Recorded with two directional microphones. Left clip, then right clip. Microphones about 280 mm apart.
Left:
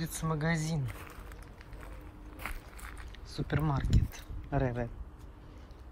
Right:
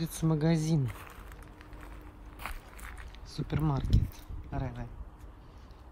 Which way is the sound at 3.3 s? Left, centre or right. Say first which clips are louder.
Even; centre.